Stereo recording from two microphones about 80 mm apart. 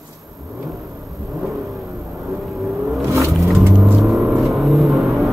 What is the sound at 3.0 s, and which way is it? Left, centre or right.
Vehicle, right.